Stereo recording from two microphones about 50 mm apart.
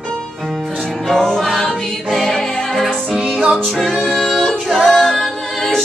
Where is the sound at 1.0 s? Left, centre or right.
Centre.